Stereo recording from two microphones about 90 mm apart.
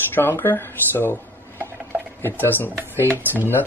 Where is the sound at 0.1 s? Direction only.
25° left (ahead or behind).